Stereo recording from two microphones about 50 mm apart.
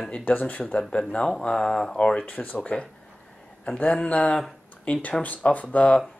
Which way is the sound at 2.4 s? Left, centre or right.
Left.